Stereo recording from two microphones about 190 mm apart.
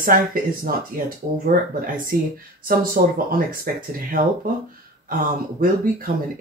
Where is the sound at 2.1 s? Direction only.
50° right (ahead or behind).